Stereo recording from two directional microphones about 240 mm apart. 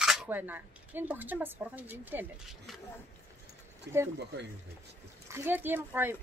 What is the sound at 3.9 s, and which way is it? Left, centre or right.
Speech, right.